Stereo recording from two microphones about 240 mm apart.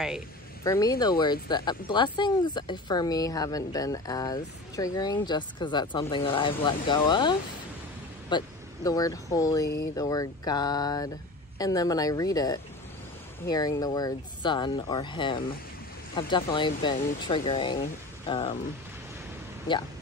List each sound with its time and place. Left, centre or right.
0.7 s speech: centre
19.7 s speech: centre